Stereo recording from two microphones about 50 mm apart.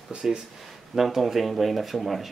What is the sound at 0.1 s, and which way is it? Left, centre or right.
Speech, centre.